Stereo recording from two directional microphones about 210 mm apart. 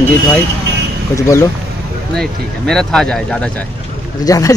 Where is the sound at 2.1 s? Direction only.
5° left (ahead or behind).